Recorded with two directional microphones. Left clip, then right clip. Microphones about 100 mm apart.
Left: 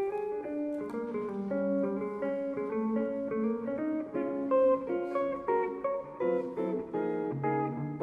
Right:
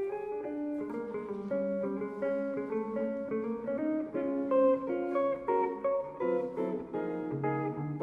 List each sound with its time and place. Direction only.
1.5 s music: 25° left (ahead or behind)